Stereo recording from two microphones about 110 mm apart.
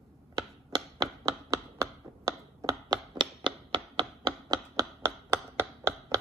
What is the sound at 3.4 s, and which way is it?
Chopping, 45° right (ahead or behind).